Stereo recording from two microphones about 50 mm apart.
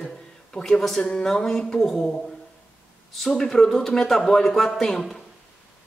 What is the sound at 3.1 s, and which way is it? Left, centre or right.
Speech, centre.